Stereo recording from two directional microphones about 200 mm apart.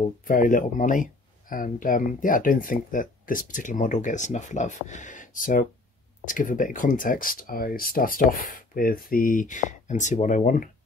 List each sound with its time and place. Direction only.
0.2 s speech: 40° left (ahead or behind)